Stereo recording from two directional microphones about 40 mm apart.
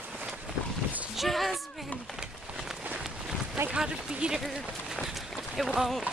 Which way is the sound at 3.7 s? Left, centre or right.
Right.